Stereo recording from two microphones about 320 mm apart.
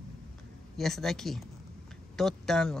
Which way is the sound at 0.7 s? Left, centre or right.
Centre.